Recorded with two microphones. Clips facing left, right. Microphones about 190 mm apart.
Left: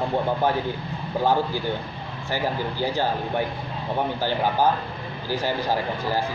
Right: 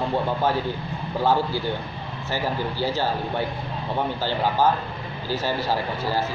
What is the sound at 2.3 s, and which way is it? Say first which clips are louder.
Speech: even; 15° left (ahead or behind).